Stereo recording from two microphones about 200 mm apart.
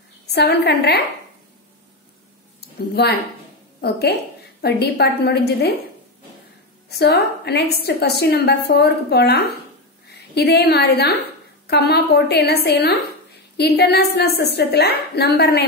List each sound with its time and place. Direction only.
0.3 s a woman's voice: 55° left (ahead or behind)
2.9 s a woman's voice: 50° left (ahead or behind)
4.6 s a woman's voice: 55° left (ahead or behind)
6.9 s a woman's voice: 55° left (ahead or behind)